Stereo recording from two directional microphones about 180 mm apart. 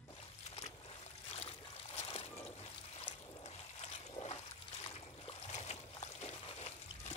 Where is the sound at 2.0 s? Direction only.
35° left (ahead or behind).